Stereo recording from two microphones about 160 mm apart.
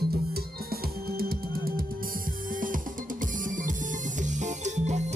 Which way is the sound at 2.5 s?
60° right (ahead or behind).